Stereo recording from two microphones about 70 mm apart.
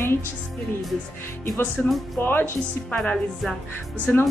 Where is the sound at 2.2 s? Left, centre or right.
Left.